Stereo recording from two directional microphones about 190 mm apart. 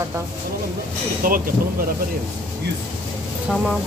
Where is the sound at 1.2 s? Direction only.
50° right (ahead or behind).